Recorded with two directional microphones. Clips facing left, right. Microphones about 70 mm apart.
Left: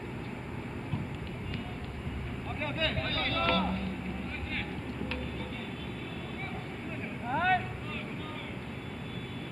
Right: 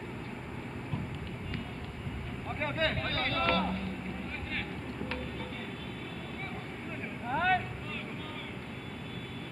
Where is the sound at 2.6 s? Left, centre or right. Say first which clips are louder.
Right 2 dB; right.